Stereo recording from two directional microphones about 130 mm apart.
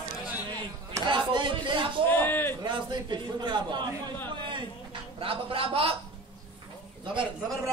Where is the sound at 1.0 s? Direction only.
40° right (ahead or behind).